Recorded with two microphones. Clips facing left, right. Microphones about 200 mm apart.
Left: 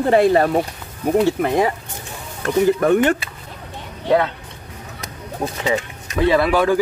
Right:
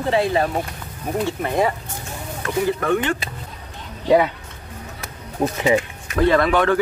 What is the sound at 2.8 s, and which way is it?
Speech, 45° left (ahead or behind).